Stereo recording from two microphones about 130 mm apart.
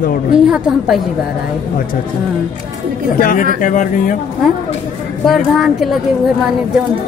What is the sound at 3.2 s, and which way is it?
Speech, 90° left.